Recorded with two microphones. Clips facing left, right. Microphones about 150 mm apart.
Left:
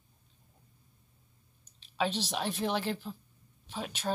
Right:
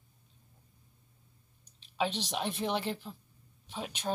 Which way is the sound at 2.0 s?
10° left (ahead or behind).